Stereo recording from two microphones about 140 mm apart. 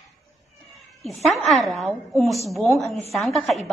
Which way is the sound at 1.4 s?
Centre (ahead or behind).